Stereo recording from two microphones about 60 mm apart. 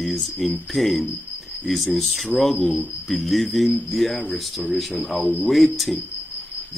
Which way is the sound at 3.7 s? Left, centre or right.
Left.